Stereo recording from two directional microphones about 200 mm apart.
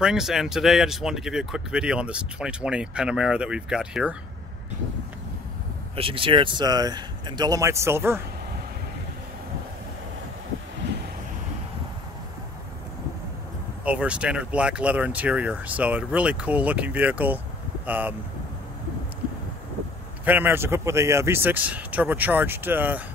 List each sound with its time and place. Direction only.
0.0 s speech: centre (ahead or behind)
5.9 s speech: 25° right (ahead or behind)
13.8 s speech: 5° right (ahead or behind)
20.2 s speech: 10° right (ahead or behind)